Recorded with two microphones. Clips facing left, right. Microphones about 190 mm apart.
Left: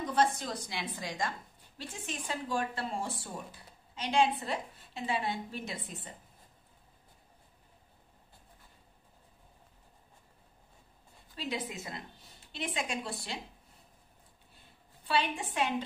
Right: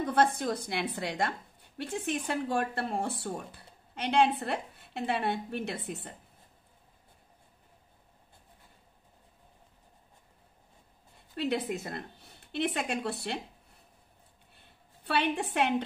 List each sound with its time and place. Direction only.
0.0 s speech: 55° right (ahead or behind)
11.3 s speech: 60° right (ahead or behind)
15.0 s speech: 65° right (ahead or behind)